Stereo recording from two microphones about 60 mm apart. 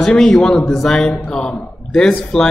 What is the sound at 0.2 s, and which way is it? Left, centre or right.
A man's voice, centre.